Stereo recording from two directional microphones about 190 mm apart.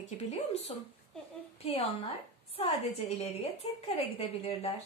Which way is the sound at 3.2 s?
30° left (ahead or behind).